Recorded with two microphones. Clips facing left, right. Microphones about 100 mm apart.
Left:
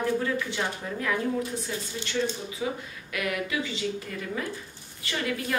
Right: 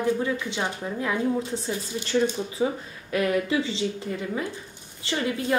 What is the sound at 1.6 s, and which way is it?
A woman's voice, 35° right (ahead or behind).